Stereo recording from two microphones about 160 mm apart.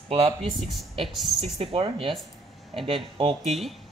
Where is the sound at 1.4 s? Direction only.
40° right (ahead or behind).